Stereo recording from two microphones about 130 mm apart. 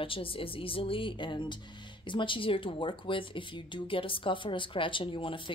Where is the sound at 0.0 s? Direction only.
45° left (ahead or behind).